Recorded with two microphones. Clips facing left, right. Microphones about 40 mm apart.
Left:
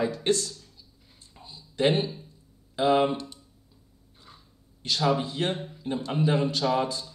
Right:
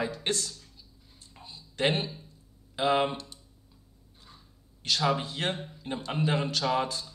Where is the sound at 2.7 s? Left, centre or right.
Right.